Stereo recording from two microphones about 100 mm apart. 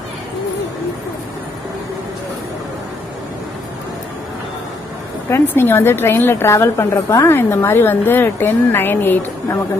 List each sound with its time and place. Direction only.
5.3 s a woman's voice: 25° left (ahead or behind)